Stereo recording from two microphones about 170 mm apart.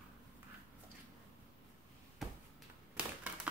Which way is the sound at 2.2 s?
Centre (ahead or behind).